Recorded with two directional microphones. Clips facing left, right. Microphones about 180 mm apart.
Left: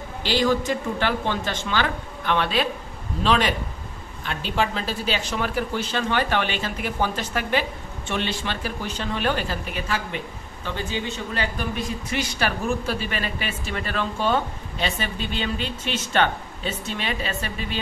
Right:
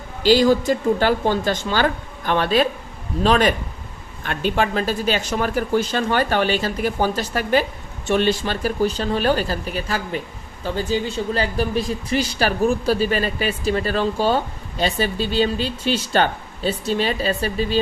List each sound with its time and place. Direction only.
0.2 s speech: 40° right (ahead or behind)